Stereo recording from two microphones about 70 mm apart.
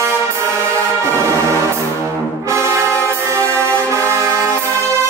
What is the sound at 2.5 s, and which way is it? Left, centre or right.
Brass instrument, right.